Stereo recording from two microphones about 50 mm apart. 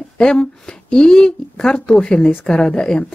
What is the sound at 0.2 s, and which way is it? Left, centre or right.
A woman's voice, centre.